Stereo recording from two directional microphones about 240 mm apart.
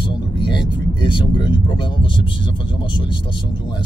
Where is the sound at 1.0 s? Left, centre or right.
Centre.